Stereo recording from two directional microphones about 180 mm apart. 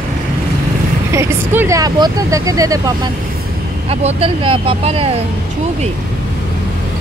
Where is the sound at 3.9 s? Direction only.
35° right (ahead or behind).